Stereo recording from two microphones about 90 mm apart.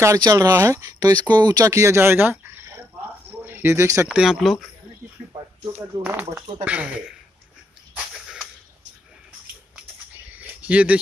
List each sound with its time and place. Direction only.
0.2 s speech: 40° right (ahead or behind)
4.1 s speech: 5° right (ahead or behind)
6.0 s speech: 15° right (ahead or behind)
10.3 s a sound: 15° right (ahead or behind)